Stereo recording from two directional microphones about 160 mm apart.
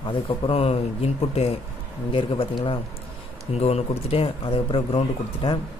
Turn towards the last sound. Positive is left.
turn(degrees=30)  # may be behind; listen again after turning